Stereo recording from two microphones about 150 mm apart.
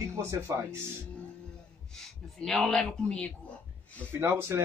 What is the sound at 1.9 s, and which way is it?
Speech, 5° left (ahead or behind).